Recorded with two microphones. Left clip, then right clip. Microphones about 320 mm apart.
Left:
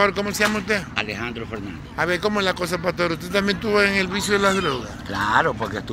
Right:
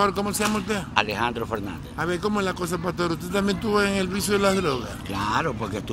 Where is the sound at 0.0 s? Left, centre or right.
Centre.